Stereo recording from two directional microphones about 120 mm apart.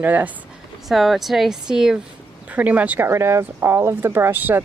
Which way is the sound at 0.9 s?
Centre (ahead or behind).